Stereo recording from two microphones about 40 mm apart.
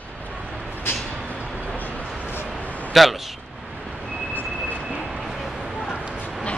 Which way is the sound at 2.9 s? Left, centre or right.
Centre.